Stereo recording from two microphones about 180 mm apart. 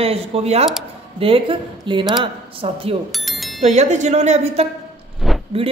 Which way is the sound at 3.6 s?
40° right (ahead or behind).